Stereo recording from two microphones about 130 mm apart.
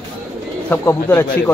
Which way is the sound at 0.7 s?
15° left (ahead or behind).